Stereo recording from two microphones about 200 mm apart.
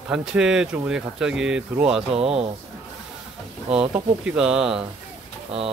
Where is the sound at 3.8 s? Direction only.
5° right (ahead or behind).